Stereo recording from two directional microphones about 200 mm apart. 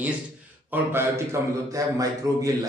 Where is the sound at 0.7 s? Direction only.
10° right (ahead or behind).